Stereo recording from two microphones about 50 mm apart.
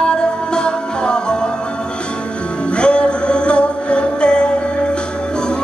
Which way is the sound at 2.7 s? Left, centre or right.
Left.